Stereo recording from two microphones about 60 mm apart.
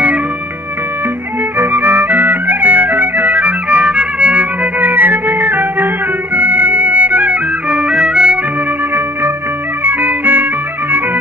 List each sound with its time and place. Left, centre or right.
1.6 s music: right; by 8.4 s centre
9.8 s music: right